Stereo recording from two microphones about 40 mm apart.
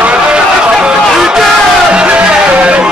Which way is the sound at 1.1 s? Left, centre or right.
Centre.